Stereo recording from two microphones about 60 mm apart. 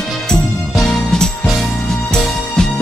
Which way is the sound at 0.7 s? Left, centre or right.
Centre.